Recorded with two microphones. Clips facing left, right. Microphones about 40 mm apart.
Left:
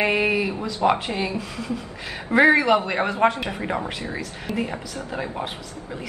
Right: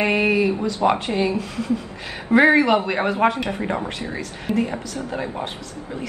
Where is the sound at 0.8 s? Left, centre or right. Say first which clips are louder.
Right 2 dB; centre.